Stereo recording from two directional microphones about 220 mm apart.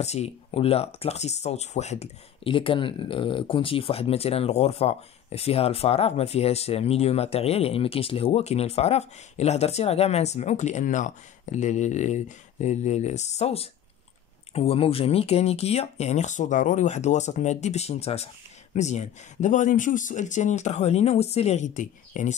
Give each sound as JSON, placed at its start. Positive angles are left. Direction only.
{"t": 0.0, "sound": "speech", "side_deg": 30}